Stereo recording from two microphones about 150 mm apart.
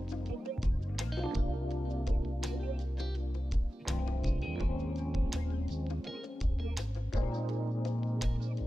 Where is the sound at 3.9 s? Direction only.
Centre (ahead or behind).